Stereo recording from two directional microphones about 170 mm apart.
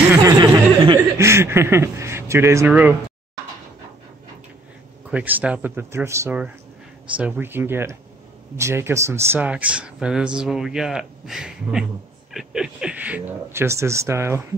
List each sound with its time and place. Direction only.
0.1 s chuckle: 20° right (ahead or behind)
5.1 s speech: 10° right (ahead or behind)